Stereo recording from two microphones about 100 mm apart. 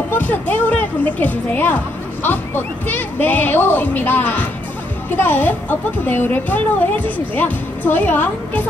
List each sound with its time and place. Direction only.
0.1 s music: 15° left (ahead or behind)
2.2 s speech: 20° left (ahead or behind)